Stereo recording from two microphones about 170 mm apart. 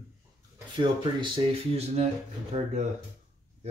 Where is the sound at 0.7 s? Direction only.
30° right (ahead or behind).